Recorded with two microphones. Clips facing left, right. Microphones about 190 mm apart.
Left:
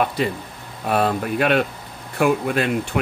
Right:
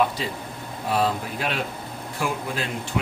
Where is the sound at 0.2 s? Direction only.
60° left (ahead or behind).